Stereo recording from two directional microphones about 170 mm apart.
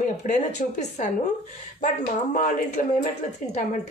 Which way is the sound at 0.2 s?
45° left (ahead or behind).